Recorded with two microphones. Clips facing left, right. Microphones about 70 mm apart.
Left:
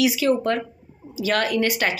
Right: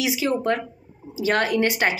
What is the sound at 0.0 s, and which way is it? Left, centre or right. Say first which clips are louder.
Speech: left 3 dB; right.